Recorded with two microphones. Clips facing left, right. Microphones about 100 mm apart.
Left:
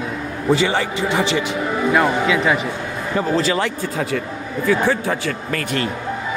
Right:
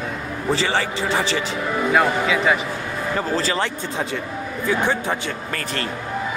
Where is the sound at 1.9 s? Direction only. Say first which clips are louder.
Left 2 dB; centre (ahead or behind).